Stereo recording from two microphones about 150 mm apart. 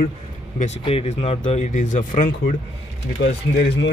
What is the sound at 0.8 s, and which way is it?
Speech, 40° left (ahead or behind).